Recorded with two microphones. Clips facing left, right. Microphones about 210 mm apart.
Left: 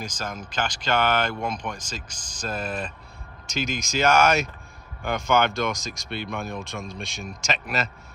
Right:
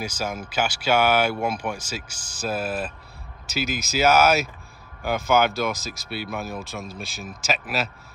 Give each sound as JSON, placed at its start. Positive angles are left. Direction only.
{"t": 0.0, "sound": "speech", "side_deg": -10}